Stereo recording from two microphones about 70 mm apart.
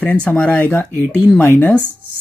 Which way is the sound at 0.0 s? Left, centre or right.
Left.